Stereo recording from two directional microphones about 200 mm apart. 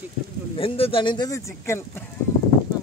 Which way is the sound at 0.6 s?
25° left (ahead or behind).